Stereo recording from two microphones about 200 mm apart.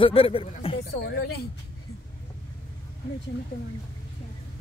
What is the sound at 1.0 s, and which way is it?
Speech, 55° left (ahead or behind).